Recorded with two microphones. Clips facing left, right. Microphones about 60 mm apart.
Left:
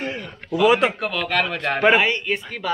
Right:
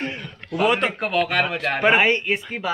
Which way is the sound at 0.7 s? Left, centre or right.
Centre.